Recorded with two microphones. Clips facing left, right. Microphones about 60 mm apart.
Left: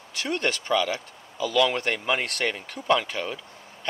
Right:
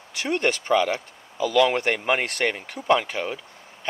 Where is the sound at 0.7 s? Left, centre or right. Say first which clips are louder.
Right 3 dB; centre.